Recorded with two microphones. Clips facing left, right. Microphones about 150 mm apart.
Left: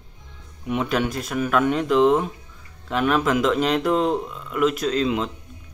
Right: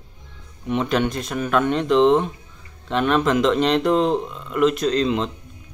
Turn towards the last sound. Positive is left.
turn(degrees=5)  # may be behind; listen again after turning